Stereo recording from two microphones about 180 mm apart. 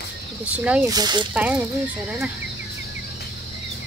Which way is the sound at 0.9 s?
25° right (ahead or behind).